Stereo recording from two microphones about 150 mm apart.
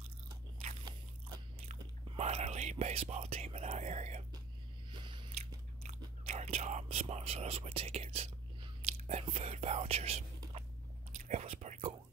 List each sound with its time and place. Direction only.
1.7 s whispering: 45° right (ahead or behind)
4.9 s biting: 35° right (ahead or behind)
5.3 s biting: 45° right (ahead or behind)
8.8 s speech: 45° right (ahead or behind)
11.1 s whispering: 50° right (ahead or behind)